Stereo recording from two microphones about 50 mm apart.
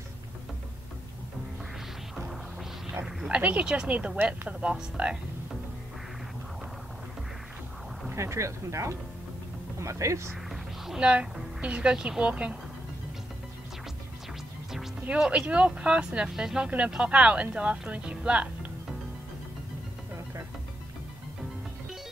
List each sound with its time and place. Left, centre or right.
3.3 s speech: right
8.2 s speech: right
11.0 s speech: right
15.1 s speech: centre